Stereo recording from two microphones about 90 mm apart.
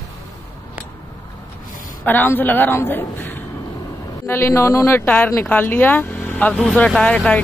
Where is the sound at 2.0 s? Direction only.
20° left (ahead or behind).